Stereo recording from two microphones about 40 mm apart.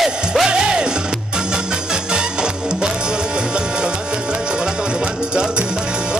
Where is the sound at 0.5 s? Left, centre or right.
Right.